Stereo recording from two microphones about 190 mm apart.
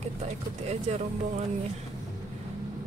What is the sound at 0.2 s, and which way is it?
Speech, 35° right (ahead or behind).